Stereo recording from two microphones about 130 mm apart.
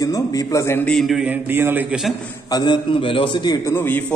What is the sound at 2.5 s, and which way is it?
A man's voice, 35° left (ahead or behind).